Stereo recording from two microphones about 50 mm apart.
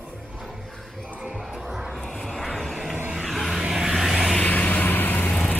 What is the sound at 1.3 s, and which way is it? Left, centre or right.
Music, centre.